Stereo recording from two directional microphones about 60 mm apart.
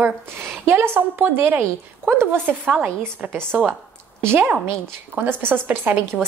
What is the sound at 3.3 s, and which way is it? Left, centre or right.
A woman's voice, right.